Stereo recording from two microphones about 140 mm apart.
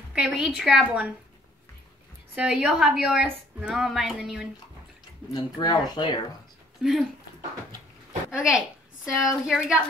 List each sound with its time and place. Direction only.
0.1 s a woman's voice: 10° right (ahead or behind)
2.3 s a woman's voice: 5° right (ahead or behind)
5.3 s speech: 30° left (ahead or behind)
6.8 s speech: centre (ahead or behind)
8.3 s a woman's voice: 5° right (ahead or behind)